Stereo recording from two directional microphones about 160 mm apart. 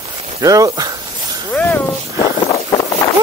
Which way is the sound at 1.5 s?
10° left (ahead or behind).